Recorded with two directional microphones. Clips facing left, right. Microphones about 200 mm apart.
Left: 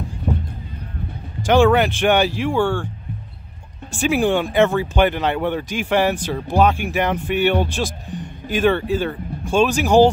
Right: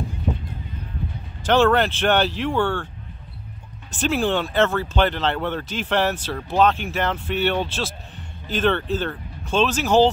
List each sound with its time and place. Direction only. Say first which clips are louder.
1.4 s speech: left 3 dB; 10° left (ahead or behind)
3.9 s speech: left 4 dB; 10° left (ahead or behind)